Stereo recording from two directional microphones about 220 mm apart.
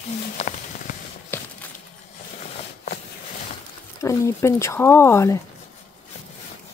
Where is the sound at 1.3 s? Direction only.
10° left (ahead or behind).